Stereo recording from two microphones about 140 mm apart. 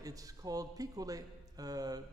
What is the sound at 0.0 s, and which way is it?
Speech, 25° right (ahead or behind).